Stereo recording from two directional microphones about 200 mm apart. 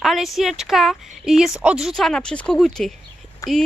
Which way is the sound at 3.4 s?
15° left (ahead or behind).